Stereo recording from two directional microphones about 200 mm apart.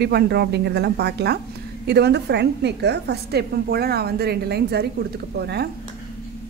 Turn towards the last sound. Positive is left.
turn(degrees=-55)  # may be behind; listen again after turning